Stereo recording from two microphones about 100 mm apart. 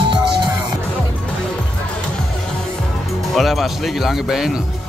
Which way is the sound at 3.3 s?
Centre (ahead or behind).